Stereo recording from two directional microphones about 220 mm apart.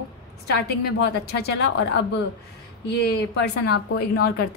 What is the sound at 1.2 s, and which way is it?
Speech, 45° left (ahead or behind).